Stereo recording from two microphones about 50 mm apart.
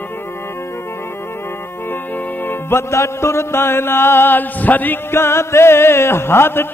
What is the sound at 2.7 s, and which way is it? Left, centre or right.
Music, left.